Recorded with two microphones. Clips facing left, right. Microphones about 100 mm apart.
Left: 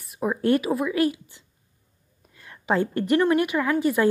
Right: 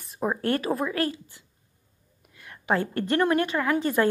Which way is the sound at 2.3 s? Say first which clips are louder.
Left 2 dB; 25° left (ahead or behind).